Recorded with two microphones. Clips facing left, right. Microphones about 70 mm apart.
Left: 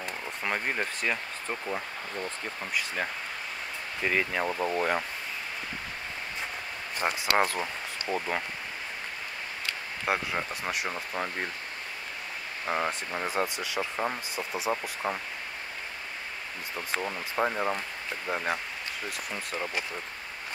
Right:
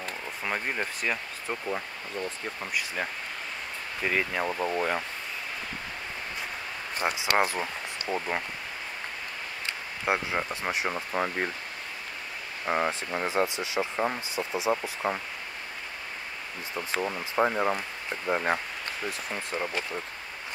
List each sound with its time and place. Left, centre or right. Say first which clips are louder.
0.4 s speech: left 1 dB; centre
7.0 s speech: even; centre
8.1 s speech: even; left
10.0 s speech: right 2 dB; centre
10.9 s speech: right 4 dB; centre
12.6 s speech: right 2 dB; centre
13.3 s speech: right 3 dB; right
13.9 s speech: right 2 dB; centre
14.3 s speech: right 3 dB; right
16.7 s speech: right 2 dB; centre